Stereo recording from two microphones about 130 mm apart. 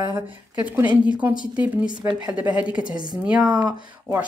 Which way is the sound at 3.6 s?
30° right (ahead or behind).